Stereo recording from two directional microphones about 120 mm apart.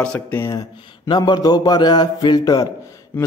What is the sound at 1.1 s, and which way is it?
Speech, 35° left (ahead or behind).